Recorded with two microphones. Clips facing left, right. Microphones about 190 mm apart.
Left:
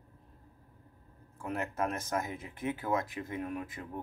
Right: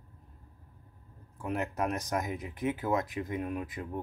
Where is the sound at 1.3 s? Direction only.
15° right (ahead or behind).